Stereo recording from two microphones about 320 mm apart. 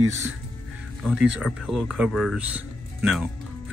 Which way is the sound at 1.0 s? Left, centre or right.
Centre.